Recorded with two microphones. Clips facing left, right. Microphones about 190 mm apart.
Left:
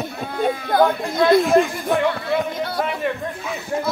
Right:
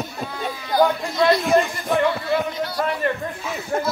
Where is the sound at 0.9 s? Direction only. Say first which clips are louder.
Left 3 dB; 55° left (ahead or behind).